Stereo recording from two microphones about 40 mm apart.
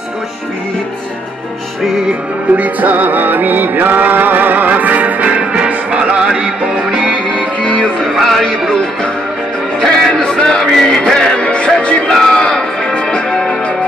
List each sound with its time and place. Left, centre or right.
2.5 s music: right
7.3 s music: left
8.2 s music: centre
9.8 s music: centre
11.3 s music: left
12.1 s music: centre